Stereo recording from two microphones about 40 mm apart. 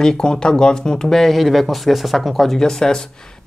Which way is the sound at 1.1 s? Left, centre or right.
Centre.